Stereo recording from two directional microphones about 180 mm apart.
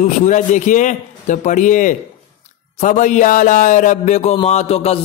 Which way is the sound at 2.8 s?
45° left (ahead or behind).